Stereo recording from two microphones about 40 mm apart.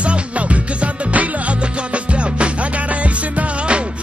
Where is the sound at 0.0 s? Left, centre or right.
Right.